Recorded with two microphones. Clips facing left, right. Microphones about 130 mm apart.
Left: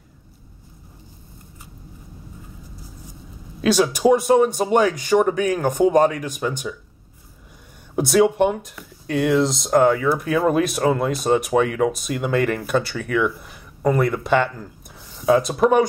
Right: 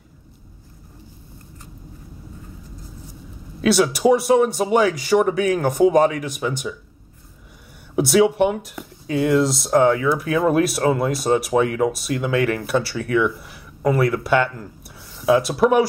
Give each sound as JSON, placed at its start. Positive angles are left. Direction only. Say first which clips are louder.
{"t": 3.6, "sound": "speech", "louder": "even", "side_deg": -5}
{"t": 7.9, "sound": "speech", "louder": "right 1 dB", "side_deg": 0}